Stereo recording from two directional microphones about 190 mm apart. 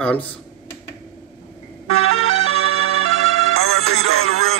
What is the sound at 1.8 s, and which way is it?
Music, 90° right.